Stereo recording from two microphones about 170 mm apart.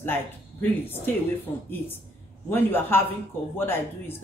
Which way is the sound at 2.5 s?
10° left (ahead or behind).